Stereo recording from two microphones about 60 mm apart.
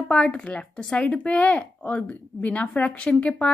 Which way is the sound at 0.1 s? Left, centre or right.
Centre.